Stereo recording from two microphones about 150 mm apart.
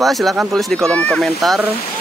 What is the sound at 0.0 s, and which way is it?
Speech, centre (ahead or behind).